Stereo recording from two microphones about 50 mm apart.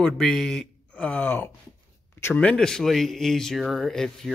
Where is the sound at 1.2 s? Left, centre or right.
Left.